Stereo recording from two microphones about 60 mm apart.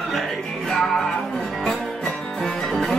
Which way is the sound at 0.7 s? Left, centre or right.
Centre.